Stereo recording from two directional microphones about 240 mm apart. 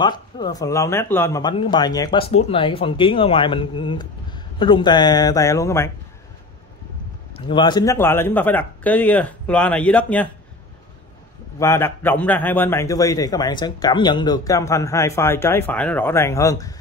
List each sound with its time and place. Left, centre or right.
0.0 s speech: centre
7.3 s speech: centre
11.6 s speech: centre